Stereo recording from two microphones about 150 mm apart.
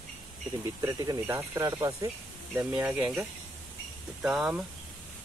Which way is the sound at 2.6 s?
10° right (ahead or behind).